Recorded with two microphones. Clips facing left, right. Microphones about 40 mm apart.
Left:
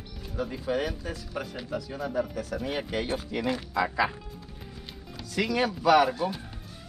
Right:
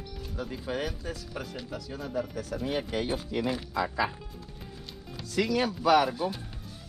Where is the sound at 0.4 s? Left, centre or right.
Centre.